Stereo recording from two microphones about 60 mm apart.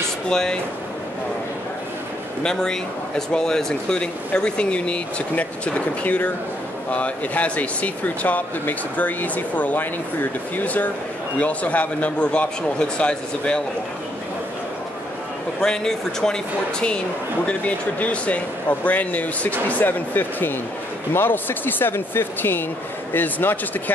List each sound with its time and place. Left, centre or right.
0.3 s a man's voice: centre
2.4 s a man's voice: centre
15.6 s a man's voice: centre
17.5 s speech: left